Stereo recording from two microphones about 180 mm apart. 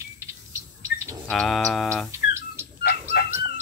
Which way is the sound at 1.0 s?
15° right (ahead or behind).